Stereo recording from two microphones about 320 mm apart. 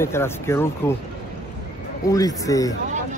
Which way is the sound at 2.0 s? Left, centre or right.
Centre.